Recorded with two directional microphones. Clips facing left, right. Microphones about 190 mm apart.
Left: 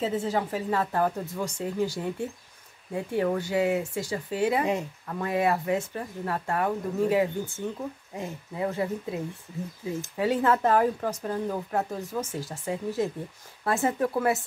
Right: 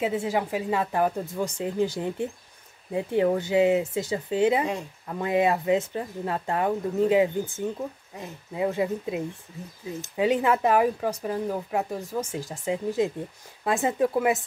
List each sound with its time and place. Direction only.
0.0 s speech: 15° right (ahead or behind)
8.6 s speech: 15° right (ahead or behind)